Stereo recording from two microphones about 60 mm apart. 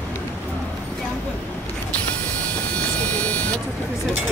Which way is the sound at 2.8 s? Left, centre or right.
Left.